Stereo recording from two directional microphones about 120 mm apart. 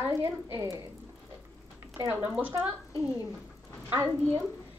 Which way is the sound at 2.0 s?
10° right (ahead or behind).